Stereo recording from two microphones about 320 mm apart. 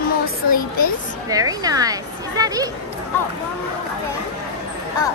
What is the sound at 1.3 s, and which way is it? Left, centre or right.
A woman's voice, centre.